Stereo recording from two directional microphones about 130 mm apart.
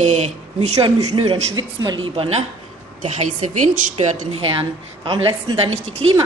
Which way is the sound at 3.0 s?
90° right.